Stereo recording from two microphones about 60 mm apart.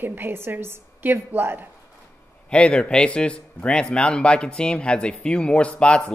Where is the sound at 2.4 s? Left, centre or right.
Centre.